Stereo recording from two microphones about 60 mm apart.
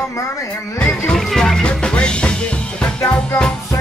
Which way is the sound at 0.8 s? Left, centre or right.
Left.